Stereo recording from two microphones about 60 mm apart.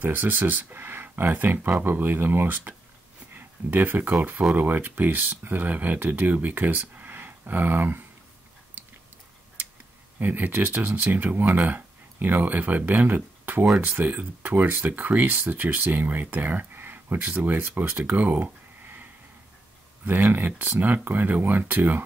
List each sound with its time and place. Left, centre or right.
0.0 s speech: right
10.1 s speech: right
20.1 s speech: right